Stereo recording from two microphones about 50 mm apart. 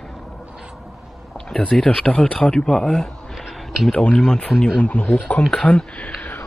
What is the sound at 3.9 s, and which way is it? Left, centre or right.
Speech, left.